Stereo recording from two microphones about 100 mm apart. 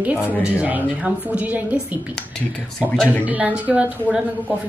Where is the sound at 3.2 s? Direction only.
15° right (ahead or behind).